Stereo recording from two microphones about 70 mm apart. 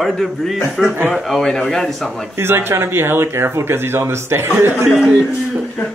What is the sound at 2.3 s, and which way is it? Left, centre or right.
Speech, right.